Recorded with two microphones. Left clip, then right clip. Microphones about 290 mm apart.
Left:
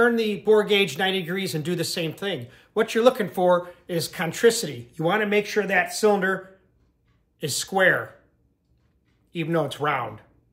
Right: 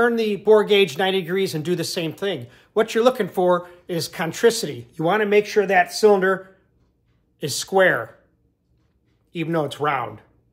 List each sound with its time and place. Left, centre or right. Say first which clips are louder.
0.0 s speech: right 2 dB; centre
9.3 s speech: right 1 dB; centre